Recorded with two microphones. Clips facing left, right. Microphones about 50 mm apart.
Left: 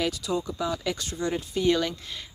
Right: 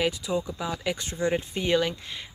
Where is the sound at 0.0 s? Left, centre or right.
Centre.